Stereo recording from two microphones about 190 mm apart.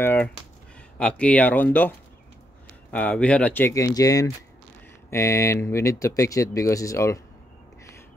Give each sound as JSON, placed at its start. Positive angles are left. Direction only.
{"t": 0.0, "sound": "speech", "side_deg": 10}